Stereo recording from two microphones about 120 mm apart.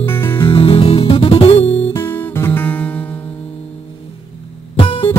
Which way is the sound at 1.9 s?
20° left (ahead or behind).